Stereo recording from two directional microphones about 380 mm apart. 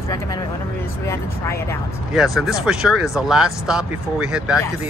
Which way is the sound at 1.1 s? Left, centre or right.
Centre.